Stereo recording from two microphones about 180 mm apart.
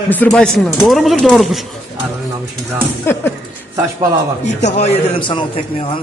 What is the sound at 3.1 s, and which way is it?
Speech, 10° left (ahead or behind).